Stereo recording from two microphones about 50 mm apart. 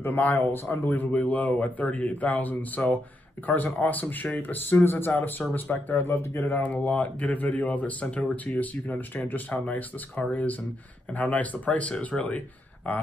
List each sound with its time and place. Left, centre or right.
0.0 s a man's voice: left